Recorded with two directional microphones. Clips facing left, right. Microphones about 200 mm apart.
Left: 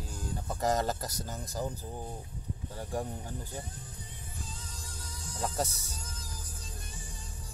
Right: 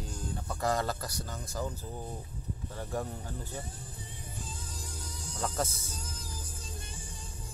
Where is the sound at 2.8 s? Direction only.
15° left (ahead or behind).